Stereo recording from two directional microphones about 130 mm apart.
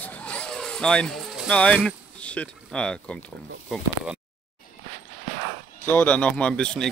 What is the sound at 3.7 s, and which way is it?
Speech, 5° right (ahead or behind).